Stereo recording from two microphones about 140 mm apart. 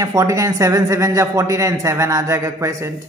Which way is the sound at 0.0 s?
25° right (ahead or behind).